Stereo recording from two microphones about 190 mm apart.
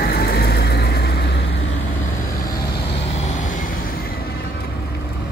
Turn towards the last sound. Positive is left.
turn(degrees=40)  # may be behind; listen again after turning